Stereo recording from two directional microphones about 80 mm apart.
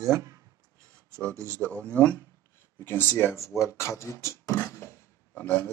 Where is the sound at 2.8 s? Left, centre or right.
Left.